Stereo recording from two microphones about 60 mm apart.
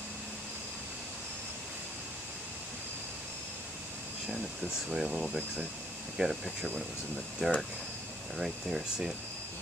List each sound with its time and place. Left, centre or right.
4.3 s speech: centre
7.4 s speech: centre
8.4 s speech: centre